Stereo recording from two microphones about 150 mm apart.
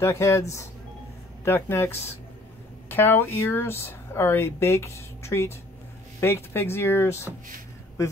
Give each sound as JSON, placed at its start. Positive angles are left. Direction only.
{"t": 0.0, "sound": "speech", "side_deg": 20}